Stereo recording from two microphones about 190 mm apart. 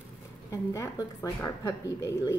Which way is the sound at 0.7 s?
15° left (ahead or behind).